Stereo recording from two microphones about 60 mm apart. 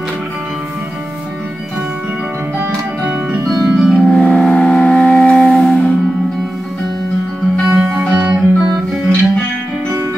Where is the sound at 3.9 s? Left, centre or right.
Centre.